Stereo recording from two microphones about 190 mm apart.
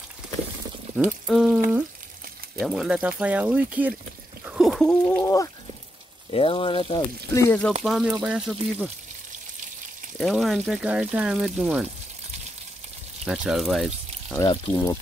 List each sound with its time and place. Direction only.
1.2 s speech: 5° right (ahead or behind)
2.6 s speech: 5° right (ahead or behind)
5.2 s speech: 15° left (ahead or behind)
6.3 s speech: 30° left (ahead or behind)
7.3 s speech: 10° left (ahead or behind)
7.8 s speech: centre (ahead or behind)
10.1 s speech: centre (ahead or behind)
13.2 s speech: 5° right (ahead or behind)
14.5 s speech: 20° left (ahead or behind)